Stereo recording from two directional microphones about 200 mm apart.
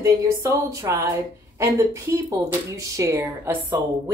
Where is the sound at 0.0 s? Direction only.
15° right (ahead or behind).